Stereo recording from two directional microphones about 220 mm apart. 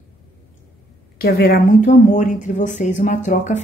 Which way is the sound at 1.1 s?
45° left (ahead or behind).